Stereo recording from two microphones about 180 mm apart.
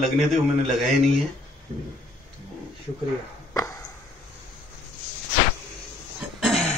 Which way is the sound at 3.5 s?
15° left (ahead or behind).